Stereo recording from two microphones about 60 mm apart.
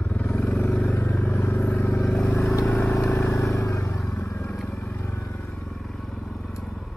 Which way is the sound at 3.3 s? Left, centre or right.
Left.